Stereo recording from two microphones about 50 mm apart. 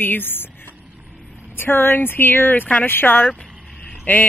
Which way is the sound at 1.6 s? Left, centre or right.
Left.